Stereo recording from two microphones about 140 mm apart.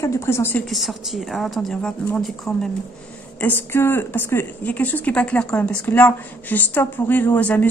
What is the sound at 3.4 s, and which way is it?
Speech, 15° left (ahead or behind).